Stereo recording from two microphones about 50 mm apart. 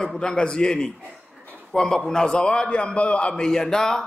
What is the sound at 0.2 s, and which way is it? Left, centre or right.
Mantra, centre.